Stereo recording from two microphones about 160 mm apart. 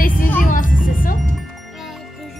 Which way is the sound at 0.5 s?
60° left (ahead or behind).